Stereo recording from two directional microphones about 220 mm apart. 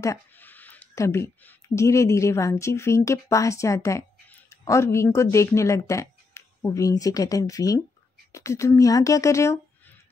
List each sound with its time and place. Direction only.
0.0 s speech: 10° left (ahead or behind)